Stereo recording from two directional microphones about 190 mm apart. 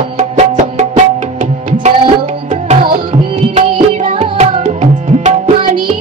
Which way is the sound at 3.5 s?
35° right (ahead or behind).